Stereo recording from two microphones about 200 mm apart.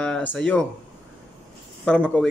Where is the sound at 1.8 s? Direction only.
5° left (ahead or behind).